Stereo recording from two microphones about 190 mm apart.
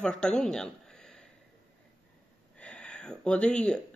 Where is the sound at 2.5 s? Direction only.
5° left (ahead or behind).